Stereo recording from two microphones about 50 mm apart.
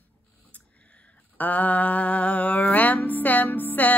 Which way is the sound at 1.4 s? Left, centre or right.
Left.